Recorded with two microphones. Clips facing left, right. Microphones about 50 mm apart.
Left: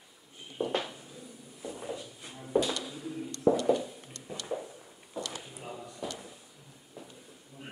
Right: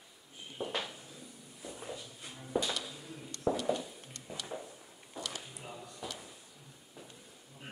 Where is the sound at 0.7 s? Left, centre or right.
Centre.